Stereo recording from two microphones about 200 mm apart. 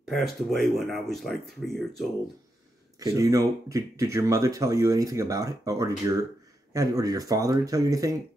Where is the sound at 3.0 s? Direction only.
15° right (ahead or behind).